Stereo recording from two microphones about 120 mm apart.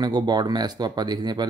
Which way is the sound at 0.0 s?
35° right (ahead or behind).